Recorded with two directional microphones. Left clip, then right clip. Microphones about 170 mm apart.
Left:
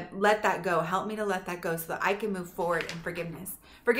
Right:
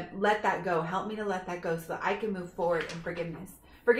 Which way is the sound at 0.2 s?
15° left (ahead or behind).